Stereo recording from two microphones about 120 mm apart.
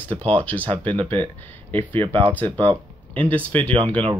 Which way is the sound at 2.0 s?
50° right (ahead or behind).